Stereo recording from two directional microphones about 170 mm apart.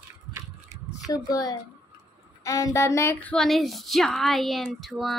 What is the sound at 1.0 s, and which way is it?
A woman's voice, 20° left (ahead or behind).